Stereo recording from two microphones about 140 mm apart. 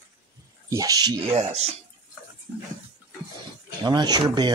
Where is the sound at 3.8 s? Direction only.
30° right (ahead or behind).